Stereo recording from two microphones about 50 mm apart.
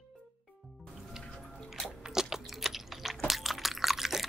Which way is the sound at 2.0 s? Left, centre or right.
Centre.